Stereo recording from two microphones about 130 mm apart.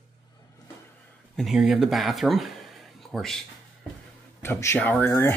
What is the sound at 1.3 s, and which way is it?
Speech, centre (ahead or behind).